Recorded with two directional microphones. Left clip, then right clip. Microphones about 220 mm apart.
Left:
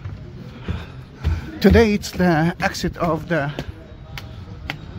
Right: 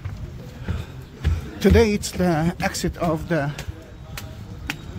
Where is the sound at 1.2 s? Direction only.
15° left (ahead or behind).